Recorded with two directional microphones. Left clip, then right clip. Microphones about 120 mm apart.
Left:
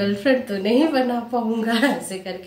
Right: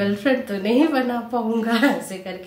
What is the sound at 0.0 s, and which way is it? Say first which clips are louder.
Speech: left 1 dB; 15° right (ahead or behind).